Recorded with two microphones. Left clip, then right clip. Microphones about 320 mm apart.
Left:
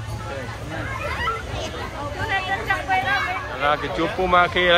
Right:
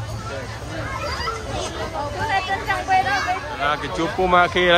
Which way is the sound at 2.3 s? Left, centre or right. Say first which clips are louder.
Even; right.